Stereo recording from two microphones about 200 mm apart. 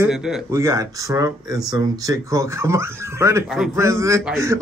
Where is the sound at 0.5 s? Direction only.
15° right (ahead or behind).